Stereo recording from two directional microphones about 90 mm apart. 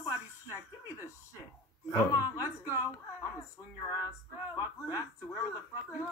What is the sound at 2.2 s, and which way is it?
Speech, 25° right (ahead or behind).